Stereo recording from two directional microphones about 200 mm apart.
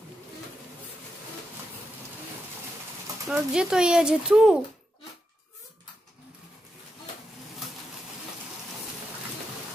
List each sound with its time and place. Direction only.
3.3 s speech: 5° right (ahead or behind)